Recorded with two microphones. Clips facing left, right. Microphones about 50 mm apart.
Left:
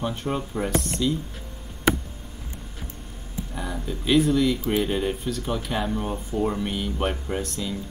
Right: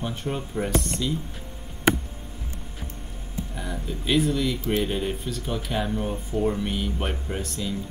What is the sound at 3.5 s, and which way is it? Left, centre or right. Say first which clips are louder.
Speech: left 3 dB; centre.